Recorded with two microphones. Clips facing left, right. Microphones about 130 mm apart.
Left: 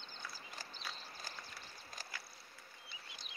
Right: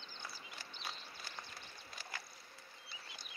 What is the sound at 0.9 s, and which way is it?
Clip-clop, 40° left (ahead or behind).